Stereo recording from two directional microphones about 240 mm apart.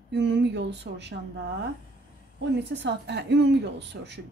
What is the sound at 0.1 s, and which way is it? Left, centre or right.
A woman's voice, right.